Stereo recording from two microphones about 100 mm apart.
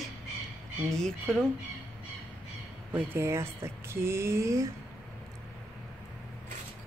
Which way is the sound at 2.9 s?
25° right (ahead or behind).